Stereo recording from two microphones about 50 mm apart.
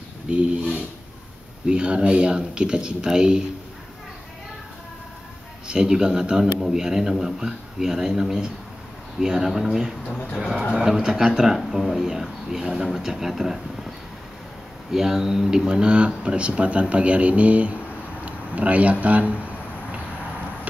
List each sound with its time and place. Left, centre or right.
0.3 s a man's voice: right
5.7 s a man's voice: centre